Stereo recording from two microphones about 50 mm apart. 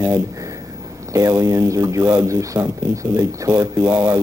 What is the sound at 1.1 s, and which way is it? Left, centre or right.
Speech, right.